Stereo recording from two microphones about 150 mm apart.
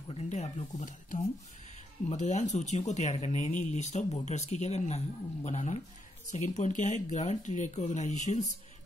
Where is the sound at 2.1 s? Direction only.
50° left (ahead or behind).